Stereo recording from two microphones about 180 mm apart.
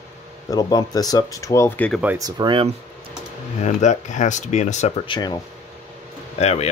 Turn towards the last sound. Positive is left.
turn(degrees=35)  # may be behind; listen again after turning